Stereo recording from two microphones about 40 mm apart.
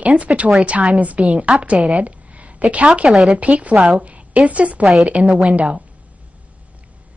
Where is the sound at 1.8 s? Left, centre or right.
Right.